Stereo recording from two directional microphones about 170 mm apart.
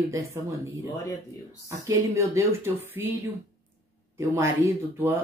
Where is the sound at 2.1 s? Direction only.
15° right (ahead or behind).